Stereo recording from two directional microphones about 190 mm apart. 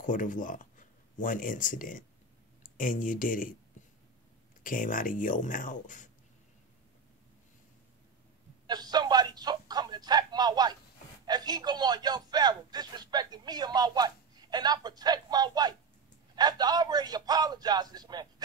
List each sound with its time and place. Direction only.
0.0 s speech: 45° left (ahead or behind)
4.6 s speech: 45° left (ahead or behind)
8.6 s a sound: 20° right (ahead or behind)
11.2 s speech: 20° right (ahead or behind)